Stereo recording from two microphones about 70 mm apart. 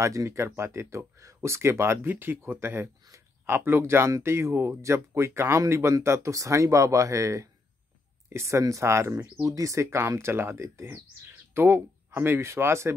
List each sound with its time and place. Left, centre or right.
0.0 s speech: right